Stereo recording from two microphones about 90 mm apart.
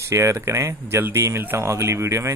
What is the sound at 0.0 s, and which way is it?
Speech, 35° right (ahead or behind).